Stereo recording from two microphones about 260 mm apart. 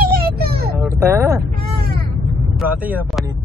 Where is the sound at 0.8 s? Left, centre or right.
Centre.